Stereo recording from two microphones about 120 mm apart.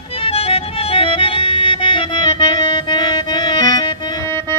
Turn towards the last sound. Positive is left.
turn(degrees=35)  # may be behind; listen again after turning